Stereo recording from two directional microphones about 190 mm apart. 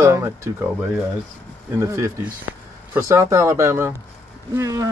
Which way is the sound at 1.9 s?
15° right (ahead or behind).